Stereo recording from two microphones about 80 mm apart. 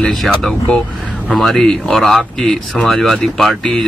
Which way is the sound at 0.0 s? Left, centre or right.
Centre.